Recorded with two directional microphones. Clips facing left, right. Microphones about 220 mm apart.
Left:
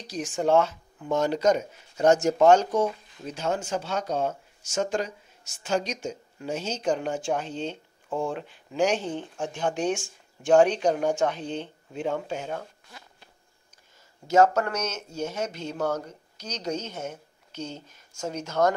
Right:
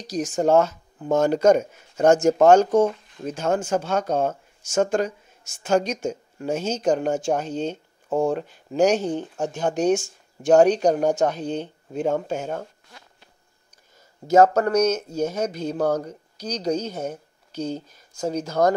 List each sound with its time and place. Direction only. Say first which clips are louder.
0.0 s speech: right 5 dB; 40° right (ahead or behind)
14.2 s speech: right 4 dB; 35° right (ahead or behind)